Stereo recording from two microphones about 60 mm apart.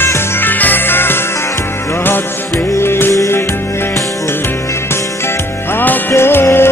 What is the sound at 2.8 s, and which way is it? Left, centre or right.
Music, left.